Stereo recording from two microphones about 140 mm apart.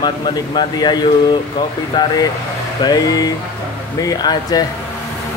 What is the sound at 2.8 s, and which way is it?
Speech, 25° left (ahead or behind).